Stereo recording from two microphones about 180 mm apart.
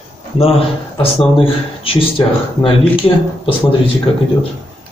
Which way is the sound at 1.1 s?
30° left (ahead or behind).